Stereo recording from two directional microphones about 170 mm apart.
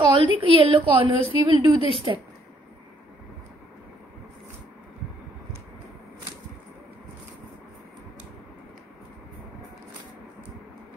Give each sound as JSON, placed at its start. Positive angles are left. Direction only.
{"t": 0.1, "sound": "a woman's voice", "side_deg": -30}
{"t": 1.8, "sound": "a woman's voice", "side_deg": 35}